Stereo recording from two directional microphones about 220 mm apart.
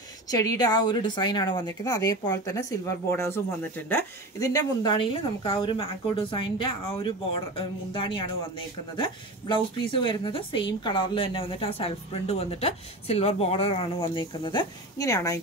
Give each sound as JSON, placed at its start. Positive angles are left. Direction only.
{"t": 0.3, "sound": "a woman's voice", "side_deg": 15}